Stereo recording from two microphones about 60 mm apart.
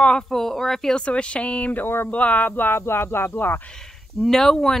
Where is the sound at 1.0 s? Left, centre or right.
Centre; by 3.6 s left.